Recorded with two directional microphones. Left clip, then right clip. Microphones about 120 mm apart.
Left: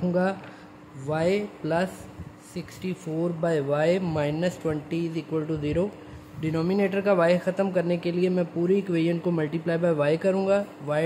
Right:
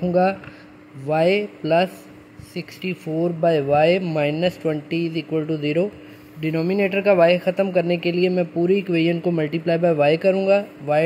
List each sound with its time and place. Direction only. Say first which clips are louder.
0.1 s speech: right 9 dB; 35° right (ahead or behind)
6.8 s speech: right 7 dB; 40° right (ahead or behind)